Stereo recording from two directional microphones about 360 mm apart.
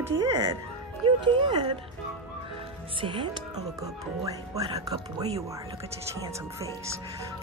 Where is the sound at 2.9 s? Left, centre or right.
Centre.